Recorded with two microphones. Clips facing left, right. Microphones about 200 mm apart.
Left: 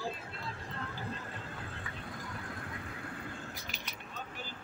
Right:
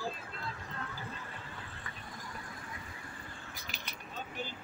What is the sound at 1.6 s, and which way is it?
Horse, 60° left (ahead or behind).